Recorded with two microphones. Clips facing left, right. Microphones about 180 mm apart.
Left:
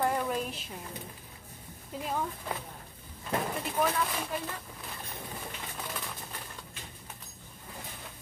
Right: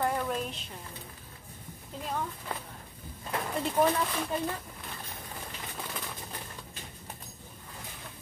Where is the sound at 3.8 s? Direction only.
25° right (ahead or behind).